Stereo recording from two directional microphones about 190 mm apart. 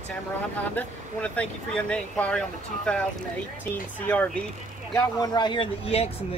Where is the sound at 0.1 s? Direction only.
10° left (ahead or behind).